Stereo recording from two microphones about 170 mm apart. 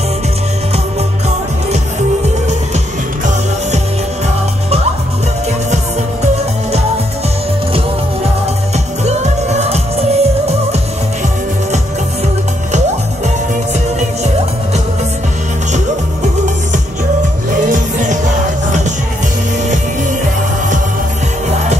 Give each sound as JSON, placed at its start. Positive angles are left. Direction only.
{"t": 9.0, "sound": "music", "side_deg": -40}
{"t": 17.5, "sound": "music", "side_deg": -50}